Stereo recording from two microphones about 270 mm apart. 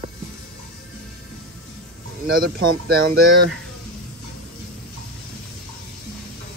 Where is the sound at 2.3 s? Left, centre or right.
Right.